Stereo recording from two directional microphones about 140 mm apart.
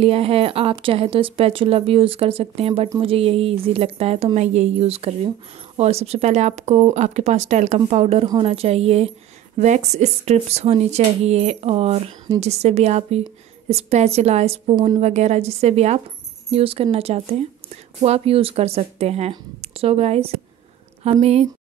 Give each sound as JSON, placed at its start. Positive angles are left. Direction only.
{"t": 0.0, "sound": "speech", "side_deg": -45}